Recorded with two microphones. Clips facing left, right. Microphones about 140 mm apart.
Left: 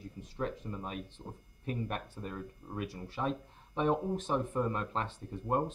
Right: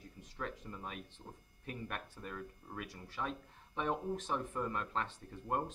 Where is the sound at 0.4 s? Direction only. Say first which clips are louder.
Left 6 dB; 25° left (ahead or behind).